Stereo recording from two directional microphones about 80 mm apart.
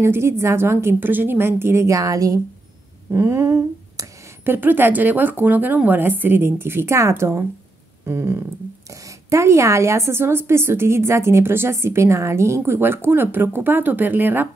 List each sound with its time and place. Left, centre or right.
0.0 s a woman's voice: right
3.1 s finger snapping: right
4.5 s a woman's voice: right
8.0 s a sound: right
9.3 s a woman's voice: right